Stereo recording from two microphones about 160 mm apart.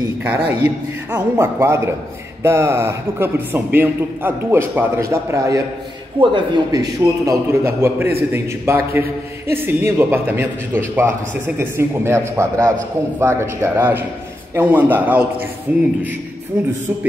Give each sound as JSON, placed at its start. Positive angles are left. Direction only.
{"t": 0.2, "sound": "a man's voice", "side_deg": -10}
{"t": 6.1, "sound": "a man's voice", "side_deg": -30}